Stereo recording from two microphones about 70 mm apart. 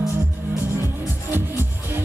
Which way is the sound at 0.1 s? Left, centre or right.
Right.